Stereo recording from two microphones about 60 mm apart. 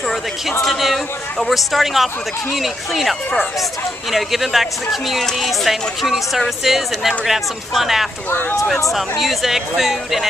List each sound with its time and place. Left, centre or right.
0.1 s speech: centre
8.3 s speech: left
8.9 s speech: centre